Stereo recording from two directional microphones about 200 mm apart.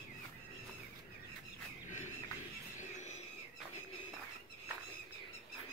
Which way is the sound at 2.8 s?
35° left (ahead or behind).